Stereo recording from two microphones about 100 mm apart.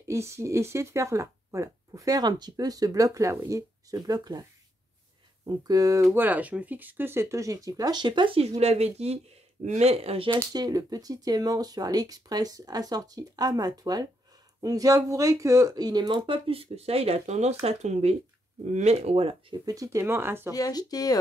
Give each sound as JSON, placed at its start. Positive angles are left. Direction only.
{"t": 0.1, "sound": "speech", "side_deg": -30}
{"t": 6.1, "sound": "speech", "side_deg": -15}
{"t": 8.4, "sound": "speech", "side_deg": -90}
{"t": 10.3, "sound": "speech", "side_deg": -40}
{"t": 19.5, "sound": "speech", "side_deg": -35}
{"t": 20.5, "sound": "speech", "side_deg": 40}